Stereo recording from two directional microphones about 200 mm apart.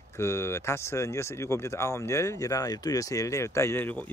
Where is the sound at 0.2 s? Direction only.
15° left (ahead or behind).